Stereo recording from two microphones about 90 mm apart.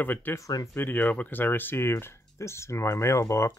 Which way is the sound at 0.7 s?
20° left (ahead or behind).